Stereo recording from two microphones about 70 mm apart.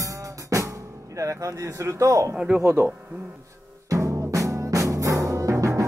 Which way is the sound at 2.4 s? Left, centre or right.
Centre.